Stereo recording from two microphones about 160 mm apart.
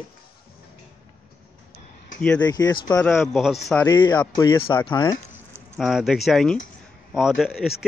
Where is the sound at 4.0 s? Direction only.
25° left (ahead or behind).